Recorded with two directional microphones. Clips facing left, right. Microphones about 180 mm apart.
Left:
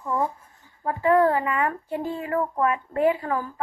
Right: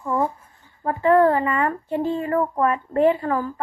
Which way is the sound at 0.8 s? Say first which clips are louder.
Right 3 dB; 10° left (ahead or behind).